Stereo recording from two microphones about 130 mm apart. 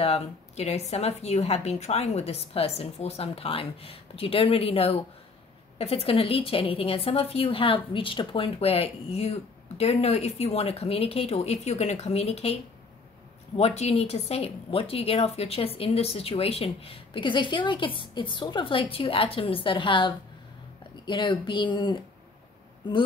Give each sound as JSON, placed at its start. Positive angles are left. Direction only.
{"t": 0.0, "sound": "a woman's voice", "side_deg": 55}
{"t": 13.6, "sound": "a woman's voice", "side_deg": 55}